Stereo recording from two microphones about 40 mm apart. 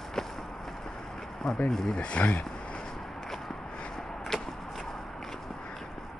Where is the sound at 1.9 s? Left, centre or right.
Left.